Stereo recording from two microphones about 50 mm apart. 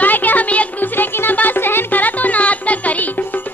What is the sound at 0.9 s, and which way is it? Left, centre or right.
Music, left.